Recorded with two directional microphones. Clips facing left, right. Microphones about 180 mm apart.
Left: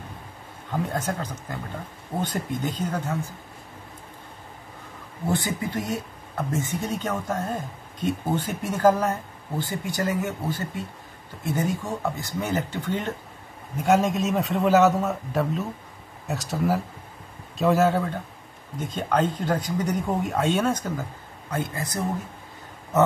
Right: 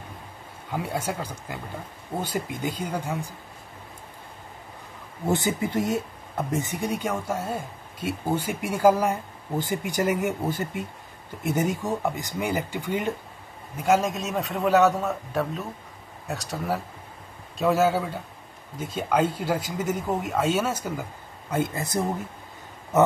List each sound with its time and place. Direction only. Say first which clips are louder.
0.7 s speech: left 1 dB; 10° right (ahead or behind)
5.2 s speech: right 2 dB; 20° right (ahead or behind)
13.7 s speech: left 2 dB; centre (ahead or behind)
21.5 s speech: right 3 dB; 20° right (ahead or behind)